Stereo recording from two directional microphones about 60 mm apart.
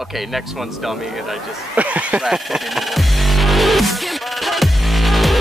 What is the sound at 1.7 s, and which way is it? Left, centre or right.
Speech, right.